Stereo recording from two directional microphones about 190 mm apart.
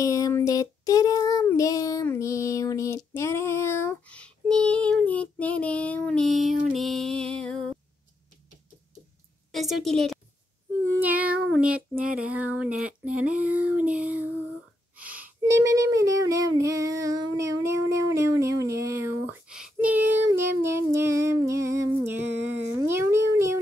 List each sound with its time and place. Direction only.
0.0 s child singing: 15° left (ahead or behind)
6.7 s a woman's voice: centre (ahead or behind)
9.5 s a woman's voice: centre (ahead or behind)
11.0 s female singing: 10° right (ahead or behind)
19.3 s female singing: 5° right (ahead or behind)